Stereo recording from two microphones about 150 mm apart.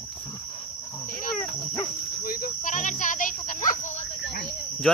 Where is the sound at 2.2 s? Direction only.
70° left (ahead or behind); by 4.0 s 55° left (ahead or behind).